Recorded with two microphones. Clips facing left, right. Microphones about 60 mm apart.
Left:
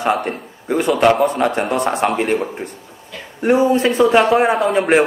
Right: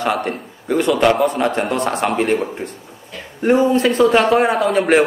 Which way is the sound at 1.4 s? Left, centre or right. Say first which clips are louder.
Left 1 dB; centre.